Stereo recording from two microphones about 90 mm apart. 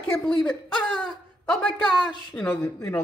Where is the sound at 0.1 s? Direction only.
15° left (ahead or behind).